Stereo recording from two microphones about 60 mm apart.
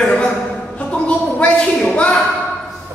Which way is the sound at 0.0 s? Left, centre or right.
Centre.